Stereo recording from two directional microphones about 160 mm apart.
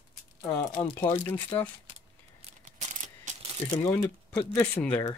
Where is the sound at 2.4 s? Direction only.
50° right (ahead or behind).